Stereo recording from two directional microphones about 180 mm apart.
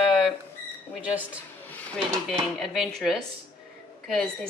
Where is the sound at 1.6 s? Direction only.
10° left (ahead or behind).